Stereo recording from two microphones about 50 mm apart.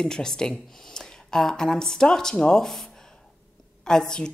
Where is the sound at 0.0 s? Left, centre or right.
Centre.